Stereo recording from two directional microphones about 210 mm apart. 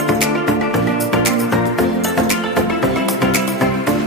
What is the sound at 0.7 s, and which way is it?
Music, centre (ahead or behind).